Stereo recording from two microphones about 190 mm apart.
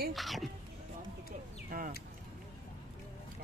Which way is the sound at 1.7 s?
50° right (ahead or behind).